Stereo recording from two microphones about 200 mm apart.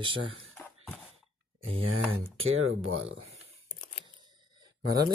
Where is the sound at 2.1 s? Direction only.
30° right (ahead or behind).